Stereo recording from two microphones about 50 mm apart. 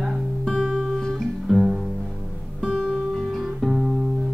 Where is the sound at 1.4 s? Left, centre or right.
Centre.